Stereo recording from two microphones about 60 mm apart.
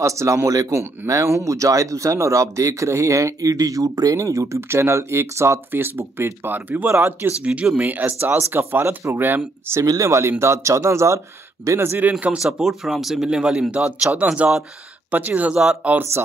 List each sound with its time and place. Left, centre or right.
0.0 s speech: right
4.6 s speech: right
5.7 s speech: right
6.9 s speech: right
7.7 s speech: right
9.8 s speech: right
11.8 s speech: right
12.1 s speech: right
12.4 s speech: centre; by 16.0 s right